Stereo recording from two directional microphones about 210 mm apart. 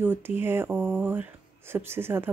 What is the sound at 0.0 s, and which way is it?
Speech, 10° right (ahead or behind).